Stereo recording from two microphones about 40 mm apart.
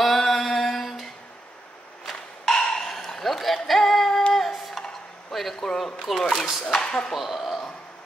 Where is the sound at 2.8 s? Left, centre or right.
Centre.